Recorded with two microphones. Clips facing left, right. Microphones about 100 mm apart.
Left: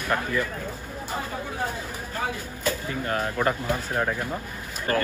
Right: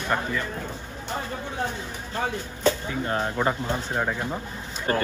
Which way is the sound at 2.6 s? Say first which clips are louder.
Right 4 dB; 25° right (ahead or behind).